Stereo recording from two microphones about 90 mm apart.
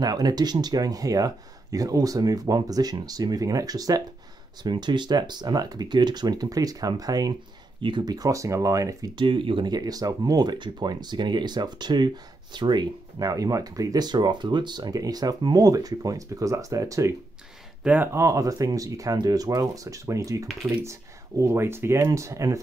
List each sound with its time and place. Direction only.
0.0 s speech: 50° right (ahead or behind)
4.6 s speech: 55° right (ahead or behind)
7.8 s speech: 55° right (ahead or behind); by 9.1 s 40° right (ahead or behind)
9.1 s speech: 70° right (ahead or behind)
9.7 s speech: 45° right (ahead or behind)
17.8 s speech: 20° right (ahead or behind)
18.1 s speech: 35° right (ahead or behind)